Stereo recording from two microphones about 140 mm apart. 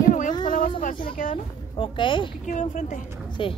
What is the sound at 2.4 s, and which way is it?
Speech, 65° left (ahead or behind).